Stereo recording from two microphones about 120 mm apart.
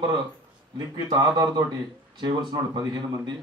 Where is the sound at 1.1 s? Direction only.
35° right (ahead or behind).